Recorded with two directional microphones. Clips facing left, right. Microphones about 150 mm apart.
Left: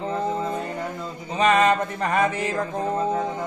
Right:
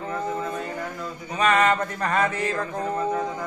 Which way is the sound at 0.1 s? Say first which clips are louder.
Left 2 dB; 25° left (ahead or behind).